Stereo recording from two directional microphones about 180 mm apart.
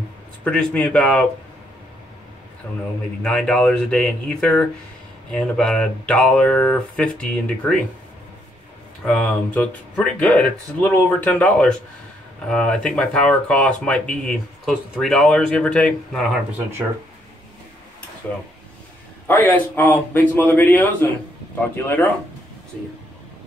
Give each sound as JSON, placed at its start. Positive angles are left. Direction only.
{"t": 0.4, "sound": "speech", "side_deg": 5}
{"t": 2.6, "sound": "speech", "side_deg": 10}
{"t": 9.0, "sound": "speech", "side_deg": 5}
{"t": 19.2, "sound": "speech", "side_deg": 10}